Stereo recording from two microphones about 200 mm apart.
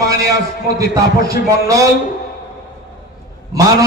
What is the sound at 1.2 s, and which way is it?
Speech, 15° right (ahead or behind).